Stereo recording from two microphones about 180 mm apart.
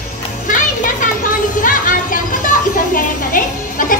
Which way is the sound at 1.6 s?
50° left (ahead or behind).